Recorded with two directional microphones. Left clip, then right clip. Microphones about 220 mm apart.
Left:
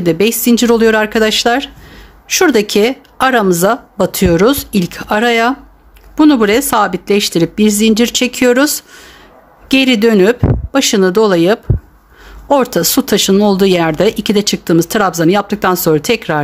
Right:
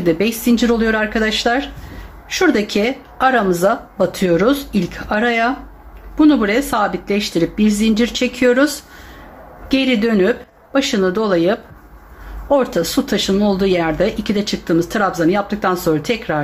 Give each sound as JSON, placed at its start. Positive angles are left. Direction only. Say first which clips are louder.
{"t": 0.0, "sound": "speech", "louder": "left 4 dB", "side_deg": 50}
{"t": 9.7, "sound": "speech", "louder": "left 6 dB", "side_deg": 50}